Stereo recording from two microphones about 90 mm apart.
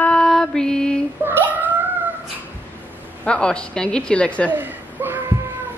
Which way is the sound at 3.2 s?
10° left (ahead or behind).